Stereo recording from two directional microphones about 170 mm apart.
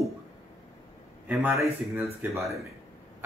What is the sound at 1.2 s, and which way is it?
A man's voice, 10° right (ahead or behind).